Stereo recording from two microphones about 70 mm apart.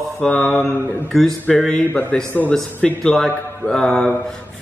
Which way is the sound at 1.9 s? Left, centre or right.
Left.